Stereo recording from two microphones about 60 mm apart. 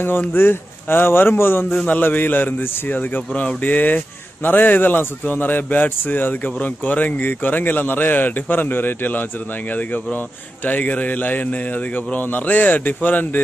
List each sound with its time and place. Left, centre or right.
0.0 s speech: left
10.6 s a man's voice: left